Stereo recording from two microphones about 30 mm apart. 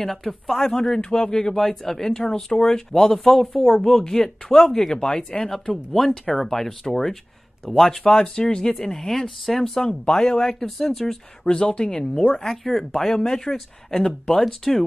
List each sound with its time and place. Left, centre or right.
0.0 s speech: centre
1.5 s speech: centre
2.0 s speech: left
3.1 s speech: centre
3.8 s speech: centre
4.9 s speech: left
5.7 s speech: centre
8.1 s speech: left; by 9.7 s centre
9.8 s speech: left
10.5 s speech: centre
11.4 s speech: left
12.4 s speech: centre
14.0 s speech: left
14.4 s speech: centre